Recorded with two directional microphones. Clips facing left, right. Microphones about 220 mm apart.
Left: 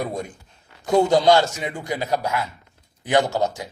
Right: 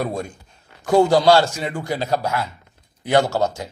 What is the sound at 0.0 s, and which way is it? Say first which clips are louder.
Speech: right 2 dB; 20° left (ahead or behind).